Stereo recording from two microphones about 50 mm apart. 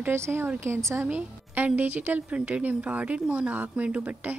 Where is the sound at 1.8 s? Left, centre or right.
Right.